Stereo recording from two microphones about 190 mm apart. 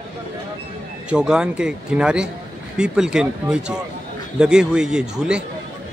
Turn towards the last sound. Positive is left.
turn(degrees=-5)  # may be behind; listen again after turning